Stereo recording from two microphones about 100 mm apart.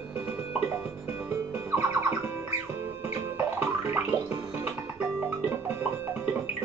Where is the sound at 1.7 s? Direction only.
20° right (ahead or behind).